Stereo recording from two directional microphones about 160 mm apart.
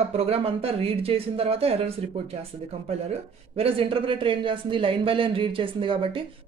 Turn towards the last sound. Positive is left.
turn(degrees=-30)  # may be behind; listen again after turning